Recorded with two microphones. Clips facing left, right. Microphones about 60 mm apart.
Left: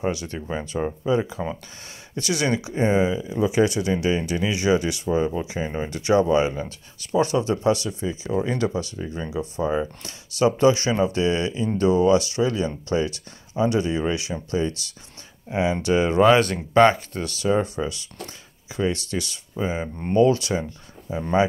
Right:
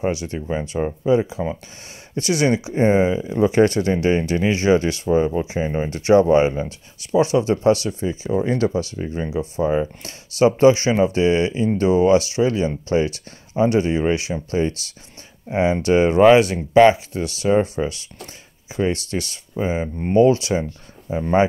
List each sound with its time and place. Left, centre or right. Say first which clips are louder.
0.0 s speech: right 3 dB; right
0.5 s speech: right 3 dB; centre
1.0 s speech: right 6 dB; right
3.3 s speech: right 4 dB; right
5.0 s speech: right 4 dB; right; by 16.9 s centre
17.2 s speech: right 3 dB; right
20.2 s speech: right 4 dB; right